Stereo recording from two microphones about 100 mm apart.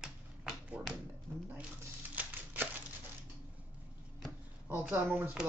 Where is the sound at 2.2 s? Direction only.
15° right (ahead or behind).